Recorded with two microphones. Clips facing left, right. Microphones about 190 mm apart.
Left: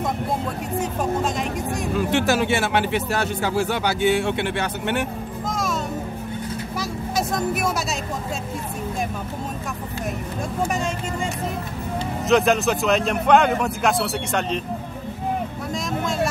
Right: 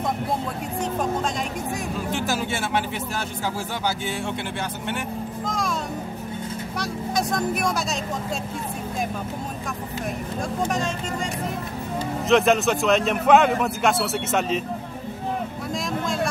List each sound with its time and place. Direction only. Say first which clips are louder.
2.0 s speech: left 8 dB; 70° left (ahead or behind)
5.5 s music: left 2 dB; 5° left (ahead or behind)
6.8 s vehicle: even; 5° left (ahead or behind)
10.6 s speech: left 1 dB; 5° left (ahead or behind)
12.3 s a man's voice: even; centre (ahead or behind)